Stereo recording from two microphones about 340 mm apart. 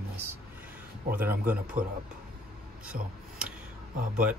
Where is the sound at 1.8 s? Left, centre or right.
Right.